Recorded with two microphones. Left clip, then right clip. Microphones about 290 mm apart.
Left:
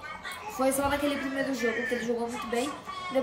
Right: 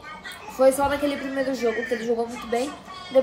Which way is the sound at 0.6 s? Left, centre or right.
Centre.